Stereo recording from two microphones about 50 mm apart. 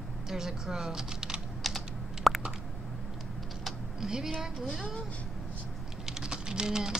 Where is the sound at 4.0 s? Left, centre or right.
Centre.